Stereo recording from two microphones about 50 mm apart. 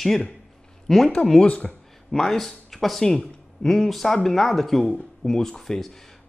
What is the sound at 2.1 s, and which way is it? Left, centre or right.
Speech, centre.